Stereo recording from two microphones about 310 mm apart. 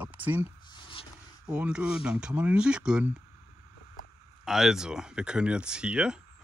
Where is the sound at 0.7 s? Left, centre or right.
Centre.